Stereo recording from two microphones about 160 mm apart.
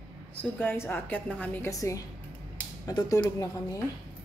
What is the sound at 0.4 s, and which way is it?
A woman's voice, 10° left (ahead or behind).